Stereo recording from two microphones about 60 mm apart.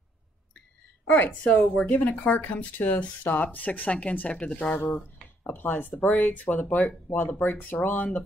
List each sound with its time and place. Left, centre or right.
1.4 s speech: left
4.9 s speech: left